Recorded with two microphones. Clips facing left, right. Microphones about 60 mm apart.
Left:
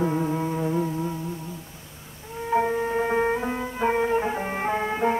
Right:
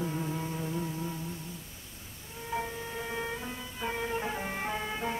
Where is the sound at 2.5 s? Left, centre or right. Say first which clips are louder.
Left 13 dB; left.